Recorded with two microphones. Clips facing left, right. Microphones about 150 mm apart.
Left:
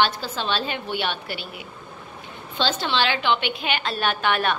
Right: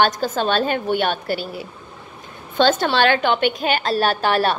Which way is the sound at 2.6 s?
50° right (ahead or behind).